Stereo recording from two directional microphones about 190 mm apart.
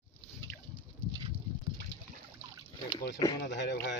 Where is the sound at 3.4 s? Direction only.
65° left (ahead or behind).